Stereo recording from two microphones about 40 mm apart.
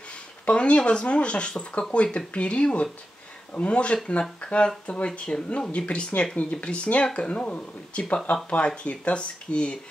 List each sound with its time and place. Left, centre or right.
0.5 s speech: left